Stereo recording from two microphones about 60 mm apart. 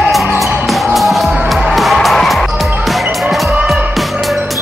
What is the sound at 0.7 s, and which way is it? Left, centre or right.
Music, centre.